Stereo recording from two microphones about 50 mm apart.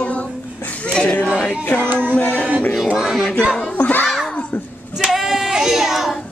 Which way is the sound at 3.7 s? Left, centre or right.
Left.